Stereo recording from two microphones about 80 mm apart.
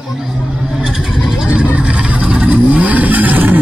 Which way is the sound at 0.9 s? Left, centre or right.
Centre.